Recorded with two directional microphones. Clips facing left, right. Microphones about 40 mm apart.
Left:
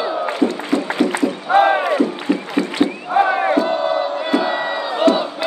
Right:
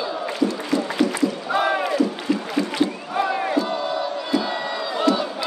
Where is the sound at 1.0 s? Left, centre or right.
Left.